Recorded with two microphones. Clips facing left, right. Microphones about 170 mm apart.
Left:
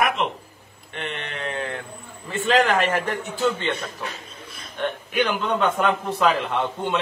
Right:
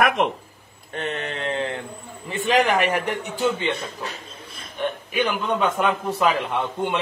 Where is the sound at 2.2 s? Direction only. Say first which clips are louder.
Even; 15° right (ahead or behind).